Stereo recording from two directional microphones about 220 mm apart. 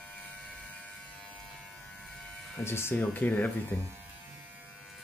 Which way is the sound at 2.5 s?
10° left (ahead or behind).